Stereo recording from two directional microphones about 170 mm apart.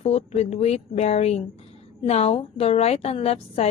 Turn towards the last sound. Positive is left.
turn(degrees=35)  # may be behind; listen again after turning